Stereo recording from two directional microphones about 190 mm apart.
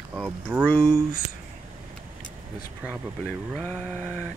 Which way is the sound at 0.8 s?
15° right (ahead or behind).